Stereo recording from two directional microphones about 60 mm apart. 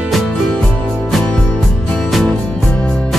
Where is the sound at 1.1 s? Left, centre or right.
Centre.